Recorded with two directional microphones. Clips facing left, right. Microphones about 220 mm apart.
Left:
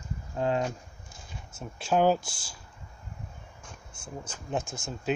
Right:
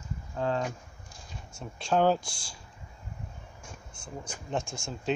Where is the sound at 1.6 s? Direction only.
5° left (ahead or behind).